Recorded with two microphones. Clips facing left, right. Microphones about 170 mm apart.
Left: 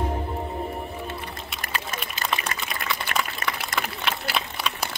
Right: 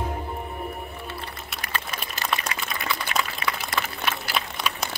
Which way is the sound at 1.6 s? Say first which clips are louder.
Even; 45° left (ahead or behind).